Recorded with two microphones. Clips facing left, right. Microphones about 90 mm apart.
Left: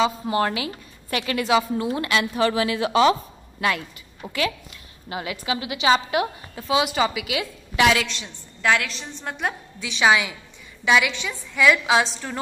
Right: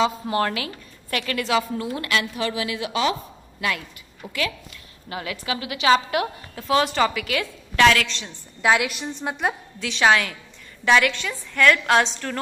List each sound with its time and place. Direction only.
0.0 s a woman's voice: 10° left (ahead or behind); by 2.4 s 25° left (ahead or behind)
2.4 s speech: 35° left (ahead or behind)
5.1 s a woman's voice: 10° left (ahead or behind)
8.6 s a woman's voice: 10° right (ahead or behind); by 12.4 s 10° left (ahead or behind)